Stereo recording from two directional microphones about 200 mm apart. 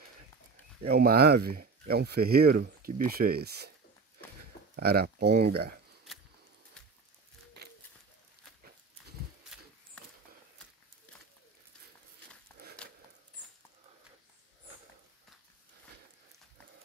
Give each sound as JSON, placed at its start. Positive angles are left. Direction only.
{"t": 0.8, "sound": "speech", "side_deg": -50}
{"t": 4.7, "sound": "speech", "side_deg": -50}
{"t": 12.8, "sound": "a sound", "side_deg": 5}